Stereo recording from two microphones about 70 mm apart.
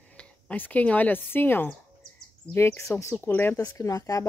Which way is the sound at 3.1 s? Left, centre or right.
Left.